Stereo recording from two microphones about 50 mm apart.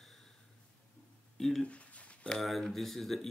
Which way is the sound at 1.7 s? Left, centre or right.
Left.